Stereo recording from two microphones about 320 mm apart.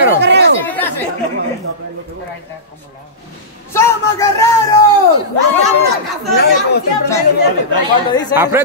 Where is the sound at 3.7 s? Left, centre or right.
Centre.